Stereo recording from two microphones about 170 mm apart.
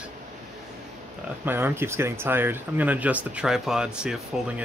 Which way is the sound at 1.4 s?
10° right (ahead or behind).